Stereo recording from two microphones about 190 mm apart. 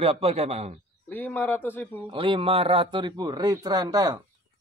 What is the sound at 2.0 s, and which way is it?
Speech, 25° right (ahead or behind).